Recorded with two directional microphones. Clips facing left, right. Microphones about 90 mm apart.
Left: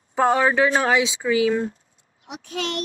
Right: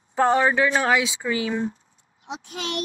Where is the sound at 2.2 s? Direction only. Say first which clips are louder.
Left 3 dB; 20° right (ahead or behind).